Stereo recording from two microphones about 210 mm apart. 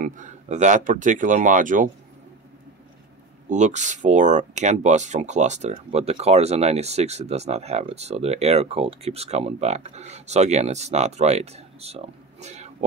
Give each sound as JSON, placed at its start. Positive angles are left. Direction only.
{"t": 0.0, "sound": "speech", "side_deg": -35}
{"t": 3.4, "sound": "speech", "side_deg": -35}